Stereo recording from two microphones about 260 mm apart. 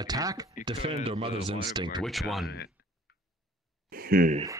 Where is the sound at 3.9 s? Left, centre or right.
Right.